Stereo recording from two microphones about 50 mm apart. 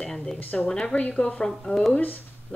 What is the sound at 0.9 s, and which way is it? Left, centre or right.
Speech, left.